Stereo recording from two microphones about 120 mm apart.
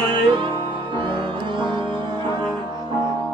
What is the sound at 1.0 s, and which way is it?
Music, 45° right (ahead or behind).